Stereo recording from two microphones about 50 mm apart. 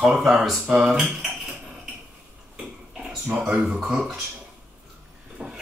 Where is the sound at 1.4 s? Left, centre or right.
Centre.